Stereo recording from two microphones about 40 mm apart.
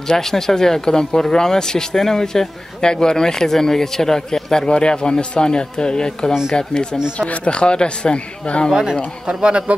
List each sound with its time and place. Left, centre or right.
0.1 s a man's voice: centre; by 8.6 s left
9.3 s speech: right